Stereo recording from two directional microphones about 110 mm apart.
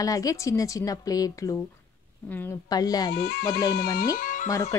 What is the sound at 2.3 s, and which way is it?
Speech, 15° left (ahead or behind).